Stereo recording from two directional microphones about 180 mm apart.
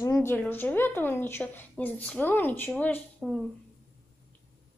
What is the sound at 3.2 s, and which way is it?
Speech, centre (ahead or behind).